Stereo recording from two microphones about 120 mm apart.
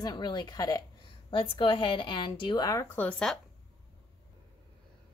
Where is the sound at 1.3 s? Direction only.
45° left (ahead or behind).